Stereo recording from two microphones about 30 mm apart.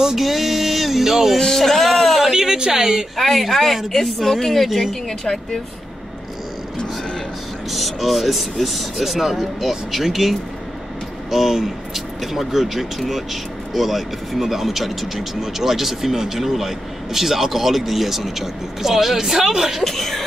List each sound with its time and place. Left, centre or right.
0.2 s music: centre
1.4 s a sound: centre
2.3 s speech: right
3.2 s speech: centre
7.7 s speech: centre
19.8 s speech: centre